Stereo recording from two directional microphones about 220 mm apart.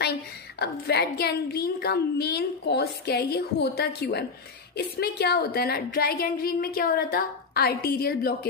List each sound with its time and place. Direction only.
0.0 s a woman's voice: 45° left (ahead or behind)